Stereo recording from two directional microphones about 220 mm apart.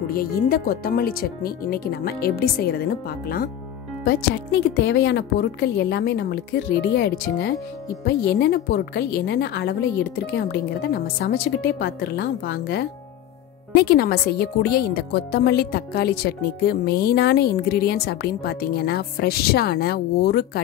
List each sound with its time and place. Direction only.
0.1 s speech: 45° left (ahead or behind)
4.7 s speech: 50° left (ahead or behind)